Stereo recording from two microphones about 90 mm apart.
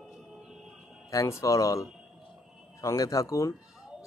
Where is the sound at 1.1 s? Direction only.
35° left (ahead or behind).